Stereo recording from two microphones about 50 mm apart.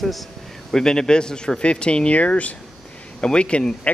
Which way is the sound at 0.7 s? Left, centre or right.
Centre.